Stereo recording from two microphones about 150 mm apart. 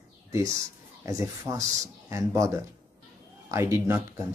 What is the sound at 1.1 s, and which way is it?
Speech, 20° right (ahead or behind).